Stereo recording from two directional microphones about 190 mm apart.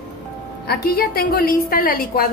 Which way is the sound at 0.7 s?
50° left (ahead or behind).